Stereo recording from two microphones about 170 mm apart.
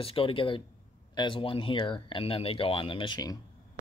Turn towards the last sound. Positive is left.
turn(degrees=25)  # may be behind; listen again after turning